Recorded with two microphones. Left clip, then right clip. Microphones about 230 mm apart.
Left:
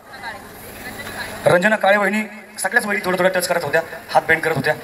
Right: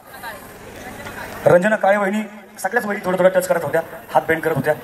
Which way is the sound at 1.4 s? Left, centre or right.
Right.